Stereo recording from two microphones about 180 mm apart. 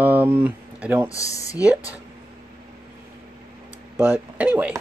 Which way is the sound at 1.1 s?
20° left (ahead or behind).